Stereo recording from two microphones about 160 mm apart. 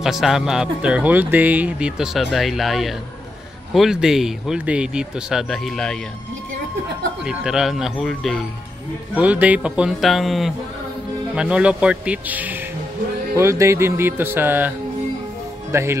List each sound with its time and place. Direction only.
0.0 s speech: centre (ahead or behind)
7.2 s speech: 5° right (ahead or behind)
15.7 s speech: 15° right (ahead or behind)